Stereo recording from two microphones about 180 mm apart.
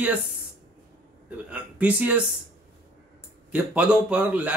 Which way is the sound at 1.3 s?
10° right (ahead or behind).